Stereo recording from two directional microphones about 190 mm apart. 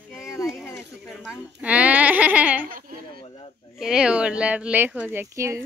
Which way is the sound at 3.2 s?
30° left (ahead or behind).